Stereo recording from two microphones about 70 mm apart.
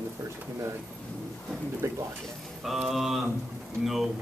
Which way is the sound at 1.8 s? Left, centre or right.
Right.